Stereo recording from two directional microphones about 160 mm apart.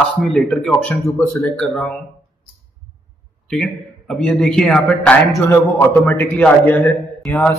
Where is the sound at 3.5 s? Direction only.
5° left (ahead or behind).